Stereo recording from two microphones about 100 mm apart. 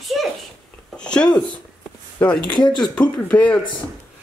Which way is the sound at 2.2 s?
15° left (ahead or behind).